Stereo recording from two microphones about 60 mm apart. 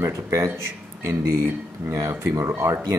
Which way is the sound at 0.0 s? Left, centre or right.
Right.